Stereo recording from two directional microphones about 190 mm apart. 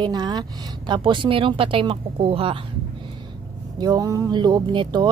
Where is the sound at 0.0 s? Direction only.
25° right (ahead or behind).